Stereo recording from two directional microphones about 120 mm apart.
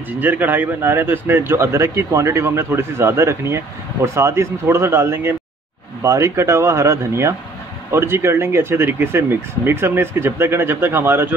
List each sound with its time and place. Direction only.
0.2 s a man's voice: 15° right (ahead or behind)